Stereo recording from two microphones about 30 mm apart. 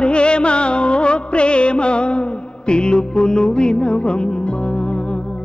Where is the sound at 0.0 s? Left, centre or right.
Left.